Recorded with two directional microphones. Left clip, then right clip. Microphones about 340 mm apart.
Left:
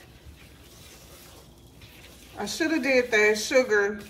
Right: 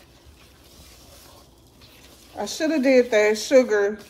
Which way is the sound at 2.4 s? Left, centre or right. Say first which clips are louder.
Right 4 dB; right.